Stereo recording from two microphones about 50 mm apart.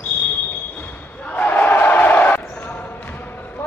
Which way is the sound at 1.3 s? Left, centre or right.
Left.